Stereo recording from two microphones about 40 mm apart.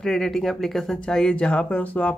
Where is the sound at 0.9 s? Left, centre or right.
Centre.